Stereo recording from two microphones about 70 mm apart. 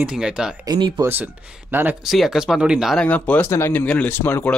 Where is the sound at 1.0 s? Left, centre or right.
Right.